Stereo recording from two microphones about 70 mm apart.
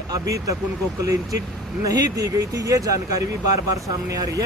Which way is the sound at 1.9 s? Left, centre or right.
Right.